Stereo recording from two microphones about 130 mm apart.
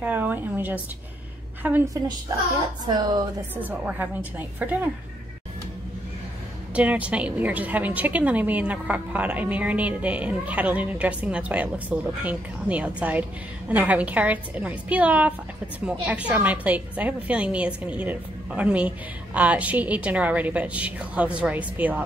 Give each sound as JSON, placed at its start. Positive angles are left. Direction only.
{"t": 0.0, "sound": "a woman's voice", "side_deg": -15}
{"t": 2.9, "sound": "a woman's voice", "side_deg": -30}
{"t": 3.6, "sound": "a woman's voice", "side_deg": -10}
{"t": 6.7, "sound": "a woman's voice", "side_deg": -10}